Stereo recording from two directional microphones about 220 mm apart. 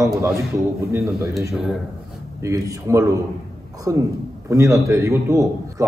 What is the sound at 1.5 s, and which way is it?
Speech, centre (ahead or behind).